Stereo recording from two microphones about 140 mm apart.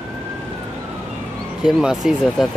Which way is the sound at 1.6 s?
5° right (ahead or behind).